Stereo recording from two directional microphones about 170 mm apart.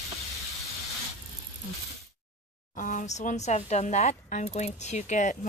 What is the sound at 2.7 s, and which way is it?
Speech, 45° left (ahead or behind).